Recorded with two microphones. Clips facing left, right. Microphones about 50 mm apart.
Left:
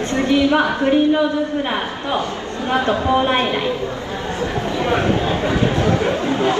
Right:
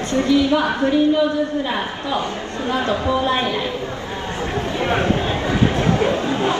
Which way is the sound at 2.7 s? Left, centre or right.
Left.